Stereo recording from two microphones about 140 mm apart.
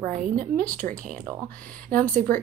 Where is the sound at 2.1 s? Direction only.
80° right.